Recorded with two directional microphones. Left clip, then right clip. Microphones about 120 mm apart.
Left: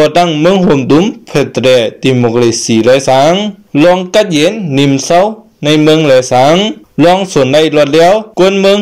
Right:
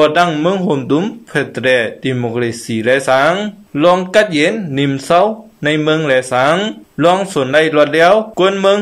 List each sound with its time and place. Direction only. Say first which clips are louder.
0.0 s speech: left 4 dB; 30° left (ahead or behind)
3.3 s speech: left 7 dB; 25° left (ahead or behind)